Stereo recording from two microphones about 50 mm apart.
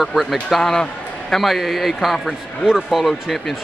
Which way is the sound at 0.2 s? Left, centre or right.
Centre.